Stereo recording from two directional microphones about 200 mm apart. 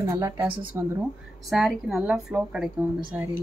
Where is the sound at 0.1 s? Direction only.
15° right (ahead or behind).